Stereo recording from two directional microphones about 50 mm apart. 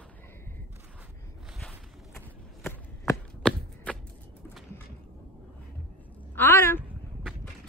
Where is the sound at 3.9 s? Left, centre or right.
Left.